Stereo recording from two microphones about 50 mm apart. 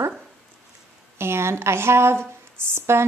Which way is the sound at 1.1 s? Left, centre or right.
Right.